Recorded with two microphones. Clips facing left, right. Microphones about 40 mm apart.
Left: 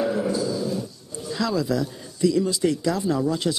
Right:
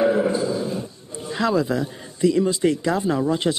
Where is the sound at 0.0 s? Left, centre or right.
Right.